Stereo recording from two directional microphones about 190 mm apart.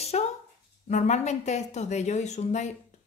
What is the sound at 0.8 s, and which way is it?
Speech, 40° left (ahead or behind).